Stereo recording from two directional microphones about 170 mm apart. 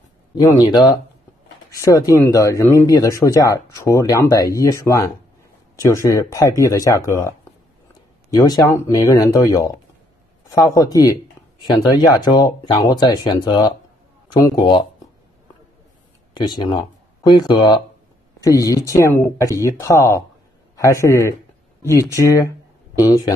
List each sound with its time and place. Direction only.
0.3 s speech: 20° left (ahead or behind)
16.3 s a man's voice: 25° left (ahead or behind)